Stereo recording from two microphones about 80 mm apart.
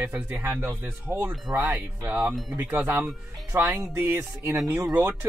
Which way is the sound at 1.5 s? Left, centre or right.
Right.